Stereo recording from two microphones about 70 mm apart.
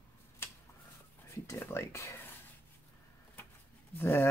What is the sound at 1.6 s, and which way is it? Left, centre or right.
Speech, left.